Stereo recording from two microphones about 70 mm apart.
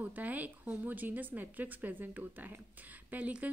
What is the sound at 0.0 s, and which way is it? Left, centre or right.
Speech, right.